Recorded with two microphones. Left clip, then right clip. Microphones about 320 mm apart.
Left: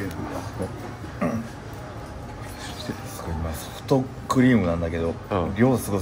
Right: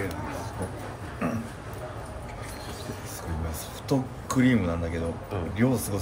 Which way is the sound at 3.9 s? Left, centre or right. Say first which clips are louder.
Left 6 dB; centre.